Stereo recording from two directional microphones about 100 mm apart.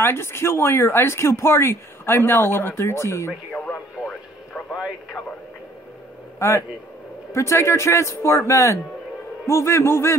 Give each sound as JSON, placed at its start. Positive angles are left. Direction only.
{"t": 0.0, "sound": "speech", "side_deg": 25}
{"t": 3.5, "sound": "radio", "side_deg": 10}
{"t": 4.7, "sound": "speech", "side_deg": -5}
{"t": 6.4, "sound": "speech", "side_deg": 30}